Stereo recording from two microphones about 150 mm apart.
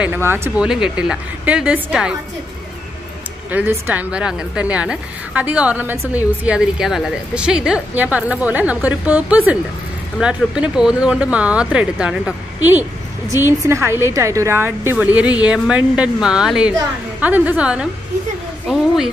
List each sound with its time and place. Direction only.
0.0 s a woman's voice: 15° right (ahead or behind)
3.5 s a woman's voice: 10° right (ahead or behind)